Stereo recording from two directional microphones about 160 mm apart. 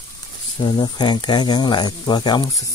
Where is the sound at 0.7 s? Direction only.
25° left (ahead or behind).